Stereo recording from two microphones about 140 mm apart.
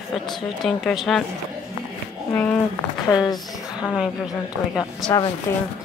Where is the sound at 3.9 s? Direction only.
5° right (ahead or behind).